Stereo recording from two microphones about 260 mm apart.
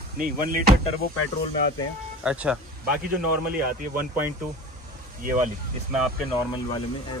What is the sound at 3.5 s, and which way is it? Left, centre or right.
Speech, right.